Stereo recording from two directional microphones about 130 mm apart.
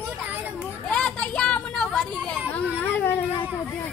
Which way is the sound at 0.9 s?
5° left (ahead or behind).